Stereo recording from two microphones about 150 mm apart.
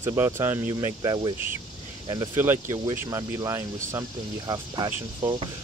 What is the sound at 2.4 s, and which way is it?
Speech, 15° right (ahead or behind).